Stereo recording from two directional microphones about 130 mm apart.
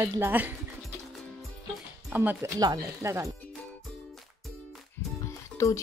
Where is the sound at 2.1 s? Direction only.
20° right (ahead or behind).